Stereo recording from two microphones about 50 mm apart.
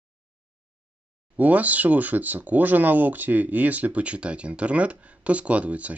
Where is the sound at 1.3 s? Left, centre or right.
Right.